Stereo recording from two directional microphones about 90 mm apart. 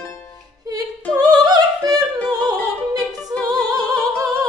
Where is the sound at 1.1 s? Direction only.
45° right (ahead or behind).